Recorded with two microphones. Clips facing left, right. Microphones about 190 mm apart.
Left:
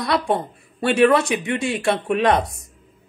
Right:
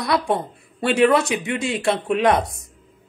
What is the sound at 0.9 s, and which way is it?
Speech, 20° right (ahead or behind).